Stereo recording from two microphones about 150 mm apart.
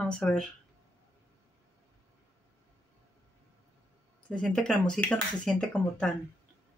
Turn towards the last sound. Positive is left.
turn(degrees=5)  # may be behind; listen again after turning